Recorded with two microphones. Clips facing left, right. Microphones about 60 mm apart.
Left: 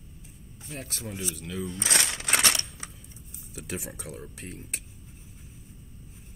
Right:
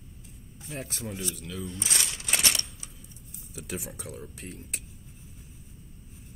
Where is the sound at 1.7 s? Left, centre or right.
Left.